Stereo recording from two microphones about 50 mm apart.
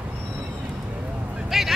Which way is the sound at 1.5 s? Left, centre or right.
Centre.